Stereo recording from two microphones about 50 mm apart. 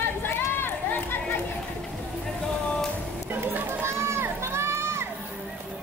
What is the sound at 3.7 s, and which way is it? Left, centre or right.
Crowd, right.